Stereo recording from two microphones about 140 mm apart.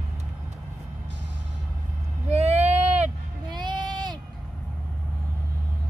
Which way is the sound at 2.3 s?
50° right (ahead or behind).